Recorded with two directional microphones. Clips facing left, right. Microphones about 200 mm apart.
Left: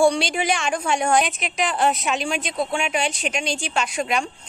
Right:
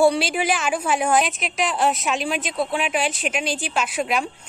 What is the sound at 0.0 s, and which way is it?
A woman's voice, 5° right (ahead or behind).